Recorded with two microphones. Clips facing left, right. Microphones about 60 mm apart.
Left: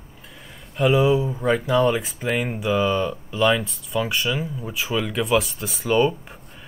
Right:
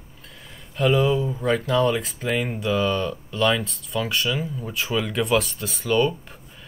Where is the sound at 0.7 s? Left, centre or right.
Centre.